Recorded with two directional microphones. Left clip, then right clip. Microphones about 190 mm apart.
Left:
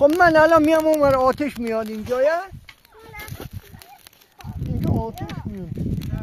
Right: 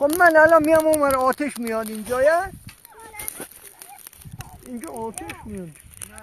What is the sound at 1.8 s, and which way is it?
Speech, 50° left (ahead or behind).